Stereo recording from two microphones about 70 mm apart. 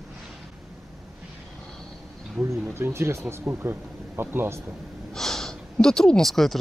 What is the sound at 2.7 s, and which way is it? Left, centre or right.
Speech, right.